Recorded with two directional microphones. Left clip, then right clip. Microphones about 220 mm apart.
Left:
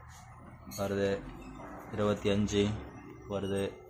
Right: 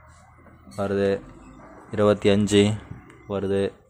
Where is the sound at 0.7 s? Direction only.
45° right (ahead or behind).